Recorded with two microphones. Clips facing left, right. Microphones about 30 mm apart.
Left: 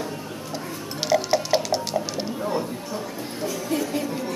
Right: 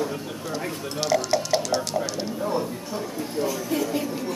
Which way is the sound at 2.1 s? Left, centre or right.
Centre.